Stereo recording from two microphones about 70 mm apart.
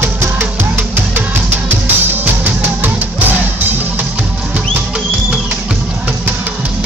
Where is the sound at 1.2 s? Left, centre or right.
Right.